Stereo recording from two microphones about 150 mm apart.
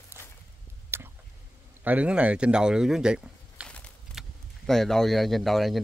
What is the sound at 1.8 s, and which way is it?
Speech, 10° right (ahead or behind).